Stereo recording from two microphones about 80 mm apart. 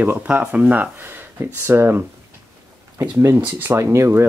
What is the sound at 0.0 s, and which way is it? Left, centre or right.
Speech, right.